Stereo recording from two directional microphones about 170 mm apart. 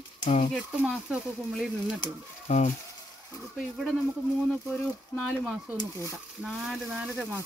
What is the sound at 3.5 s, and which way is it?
Speech, centre (ahead or behind).